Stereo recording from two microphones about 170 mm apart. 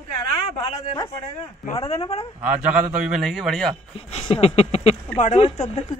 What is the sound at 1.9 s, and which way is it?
Speech, 35° left (ahead or behind).